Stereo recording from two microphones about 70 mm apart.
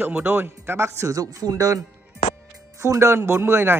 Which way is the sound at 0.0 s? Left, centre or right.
Right.